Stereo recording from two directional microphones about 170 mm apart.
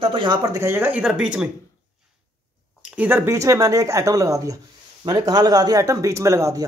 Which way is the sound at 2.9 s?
10° right (ahead or behind).